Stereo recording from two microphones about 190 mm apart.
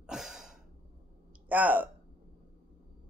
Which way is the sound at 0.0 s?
Centre (ahead or behind).